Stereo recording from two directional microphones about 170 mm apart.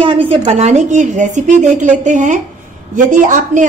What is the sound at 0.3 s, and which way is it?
A woman's voice, 35° right (ahead or behind).